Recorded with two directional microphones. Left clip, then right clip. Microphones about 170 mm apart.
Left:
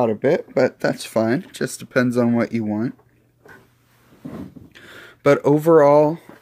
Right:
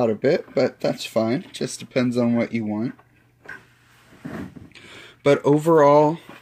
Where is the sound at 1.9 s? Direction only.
50° left (ahead or behind).